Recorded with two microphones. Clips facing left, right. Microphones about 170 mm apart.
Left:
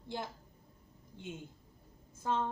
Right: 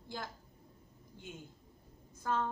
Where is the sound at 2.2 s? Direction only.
25° left (ahead or behind).